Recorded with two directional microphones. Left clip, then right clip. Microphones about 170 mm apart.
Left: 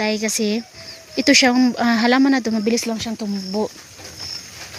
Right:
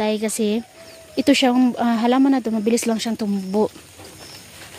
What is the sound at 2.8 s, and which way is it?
Speech, 35° right (ahead or behind).